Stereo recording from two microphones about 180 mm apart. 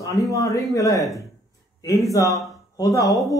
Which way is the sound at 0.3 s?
20° left (ahead or behind).